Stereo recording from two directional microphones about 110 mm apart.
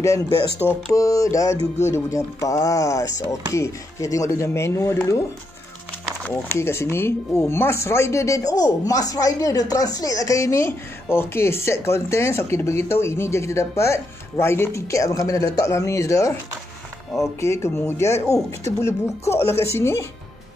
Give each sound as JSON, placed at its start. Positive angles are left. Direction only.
{"t": 0.6, "sound": "speech", "side_deg": 20}
{"t": 0.9, "sound": "music", "side_deg": 30}
{"t": 1.9, "sound": "speech", "side_deg": 30}
{"t": 6.3, "sound": "speech", "side_deg": 25}